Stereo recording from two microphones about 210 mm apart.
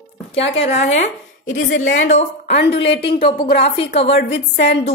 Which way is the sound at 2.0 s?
30° left (ahead or behind).